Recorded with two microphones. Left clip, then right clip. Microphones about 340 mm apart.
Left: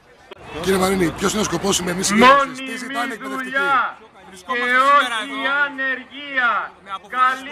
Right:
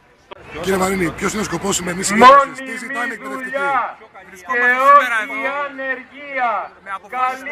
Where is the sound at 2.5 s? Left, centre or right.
Centre.